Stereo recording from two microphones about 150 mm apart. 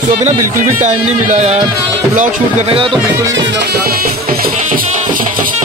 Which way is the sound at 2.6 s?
40° right (ahead or behind).